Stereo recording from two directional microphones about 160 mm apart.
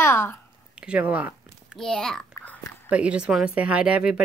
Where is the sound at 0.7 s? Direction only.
5° right (ahead or behind).